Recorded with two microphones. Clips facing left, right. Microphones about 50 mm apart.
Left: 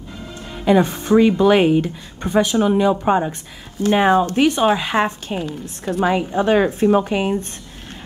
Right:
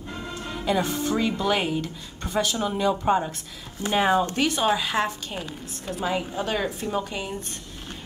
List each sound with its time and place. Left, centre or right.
0.7 s speech: left
5.9 s speech: centre
6.4 s speech: left